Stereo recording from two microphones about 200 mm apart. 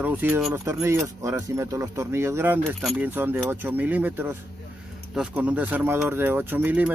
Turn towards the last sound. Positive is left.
turn(degrees=-10)  # may be behind; listen again after turning